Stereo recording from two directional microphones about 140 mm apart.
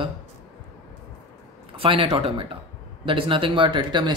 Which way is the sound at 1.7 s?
40° right (ahead or behind).